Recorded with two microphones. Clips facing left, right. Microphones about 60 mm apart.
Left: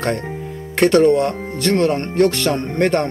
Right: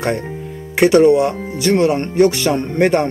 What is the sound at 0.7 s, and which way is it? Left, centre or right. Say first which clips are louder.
Speech: right 2 dB; centre.